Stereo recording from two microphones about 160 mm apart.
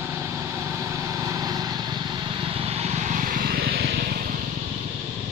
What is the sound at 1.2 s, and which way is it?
Vehicle, 25° right (ahead or behind).